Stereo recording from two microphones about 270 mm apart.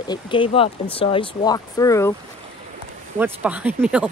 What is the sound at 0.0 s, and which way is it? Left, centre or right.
Speech, centre.